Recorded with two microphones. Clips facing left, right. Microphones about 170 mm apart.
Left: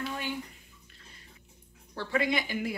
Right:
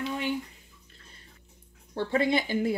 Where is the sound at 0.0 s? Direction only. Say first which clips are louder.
Right 4 dB; 20° right (ahead or behind).